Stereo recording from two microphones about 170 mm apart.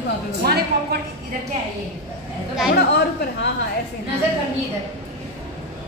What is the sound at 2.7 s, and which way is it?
Speech, 75° left (ahead or behind).